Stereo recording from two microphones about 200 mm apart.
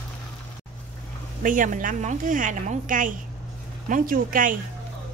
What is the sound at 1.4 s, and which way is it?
A woman's voice, 40° right (ahead or behind).